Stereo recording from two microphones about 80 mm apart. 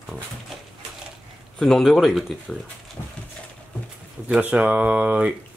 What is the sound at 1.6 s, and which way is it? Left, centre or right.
Speech, centre.